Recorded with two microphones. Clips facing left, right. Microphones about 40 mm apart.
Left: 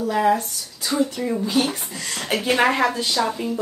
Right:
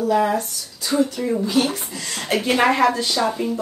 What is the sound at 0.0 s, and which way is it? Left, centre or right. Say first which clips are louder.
Speech: right 1 dB; centre.